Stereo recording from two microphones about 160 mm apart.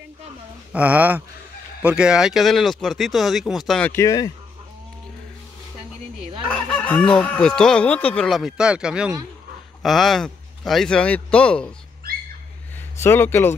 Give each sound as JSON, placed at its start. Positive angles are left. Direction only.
{"t": 0.7, "sound": "speech", "side_deg": -10}
{"t": 3.9, "sound": "speech", "side_deg": 20}
{"t": 6.5, "sound": "speech", "side_deg": 5}
{"t": 13.0, "sound": "speech", "side_deg": 15}